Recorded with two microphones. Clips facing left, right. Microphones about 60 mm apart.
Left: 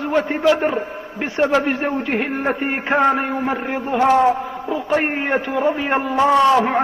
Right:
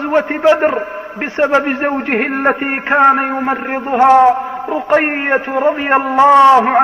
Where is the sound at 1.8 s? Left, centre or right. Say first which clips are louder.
Right 5 dB; right.